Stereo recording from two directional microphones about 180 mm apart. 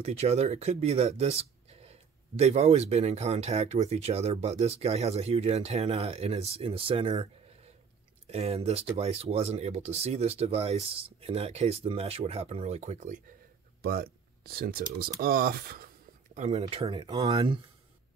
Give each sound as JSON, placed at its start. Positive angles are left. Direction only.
{"t": 0.0, "sound": "speech", "side_deg": -35}
{"t": 13.8, "sound": "speech", "side_deg": -60}
{"t": 16.3, "sound": "speech", "side_deg": -40}